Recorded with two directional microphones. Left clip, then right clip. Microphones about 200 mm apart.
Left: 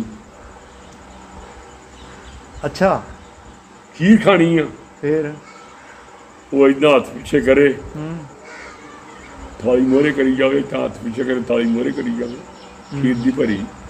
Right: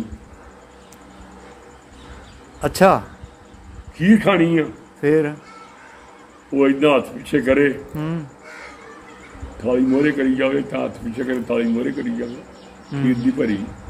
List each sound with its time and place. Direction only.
2.6 s speech: 55° right (ahead or behind)
4.0 s a man's voice: centre (ahead or behind)
5.0 s speech: 55° right (ahead or behind)
6.5 s a man's voice: 5° left (ahead or behind)
9.6 s a man's voice: 5° left (ahead or behind)